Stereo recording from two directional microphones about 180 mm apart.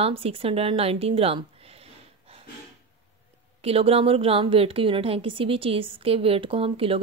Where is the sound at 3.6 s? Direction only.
30° right (ahead or behind).